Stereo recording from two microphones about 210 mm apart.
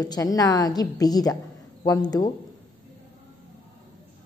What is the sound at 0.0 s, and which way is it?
A woman's voice, 15° left (ahead or behind).